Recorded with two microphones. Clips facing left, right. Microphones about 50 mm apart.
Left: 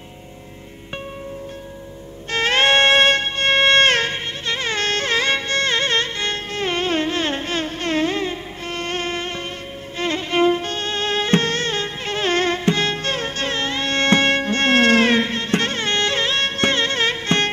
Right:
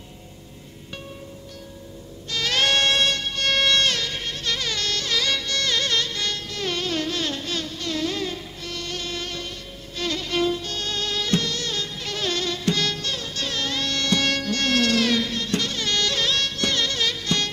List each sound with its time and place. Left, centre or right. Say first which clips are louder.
2.3 s music: left 6 dB; left